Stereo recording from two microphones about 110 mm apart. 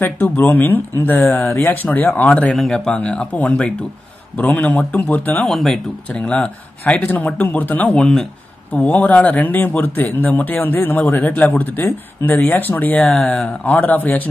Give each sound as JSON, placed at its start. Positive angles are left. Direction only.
{"t": 0.0, "sound": "speech", "side_deg": 15}
{"t": 5.5, "sound": "speech", "side_deg": 5}